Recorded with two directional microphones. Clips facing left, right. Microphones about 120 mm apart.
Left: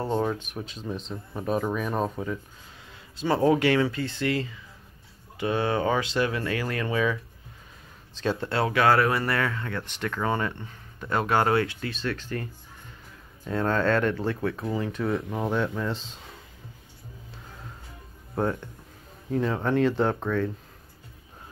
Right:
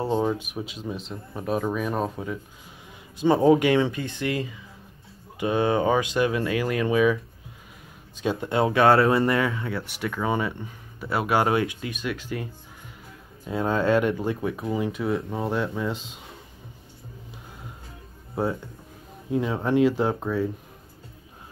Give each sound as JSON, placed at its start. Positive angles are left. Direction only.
{"t": 0.0, "sound": "speech", "side_deg": -10}
{"t": 3.2, "sound": "speech", "side_deg": -20}
{"t": 8.2, "sound": "speech", "side_deg": -15}
{"t": 13.5, "sound": "speech", "side_deg": -10}
{"t": 18.3, "sound": "speech", "side_deg": -10}